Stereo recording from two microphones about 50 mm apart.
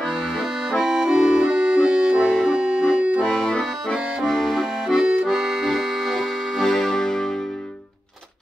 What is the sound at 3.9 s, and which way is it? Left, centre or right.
Accordion, centre.